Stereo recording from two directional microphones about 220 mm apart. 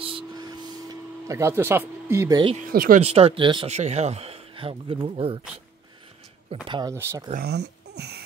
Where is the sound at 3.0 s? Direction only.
30° right (ahead or behind).